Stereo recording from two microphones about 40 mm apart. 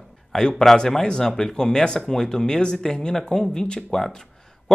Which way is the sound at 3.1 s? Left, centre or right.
Centre.